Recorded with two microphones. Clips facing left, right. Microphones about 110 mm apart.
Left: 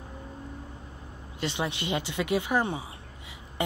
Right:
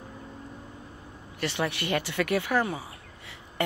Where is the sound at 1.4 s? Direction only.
20° left (ahead or behind).